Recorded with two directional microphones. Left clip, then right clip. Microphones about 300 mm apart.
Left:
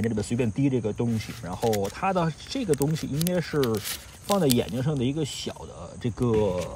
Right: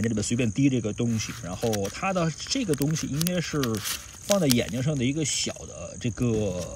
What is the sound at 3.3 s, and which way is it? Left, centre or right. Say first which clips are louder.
Speech: left 4 dB; centre.